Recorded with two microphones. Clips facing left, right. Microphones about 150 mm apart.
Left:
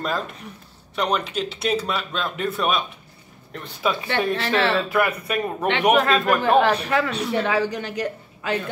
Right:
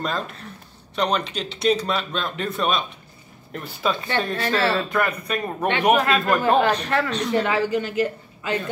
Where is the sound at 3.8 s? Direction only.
5° left (ahead or behind).